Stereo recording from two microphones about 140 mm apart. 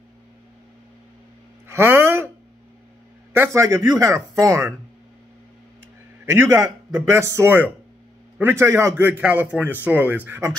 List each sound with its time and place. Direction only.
1.7 s speech: 15° right (ahead or behind)
3.3 s a man's voice: 20° right (ahead or behind)
6.2 s a man's voice: 20° right (ahead or behind)